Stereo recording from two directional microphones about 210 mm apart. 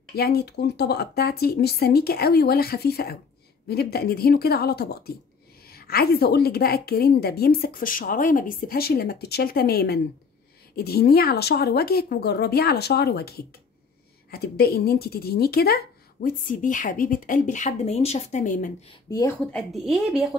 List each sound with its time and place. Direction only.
0.1 s a woman's voice: 50° left (ahead or behind)
19.0 s speech: 15° left (ahead or behind)
19.5 s a woman's voice: centre (ahead or behind)